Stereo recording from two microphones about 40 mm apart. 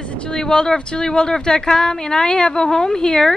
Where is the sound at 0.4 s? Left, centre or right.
Centre.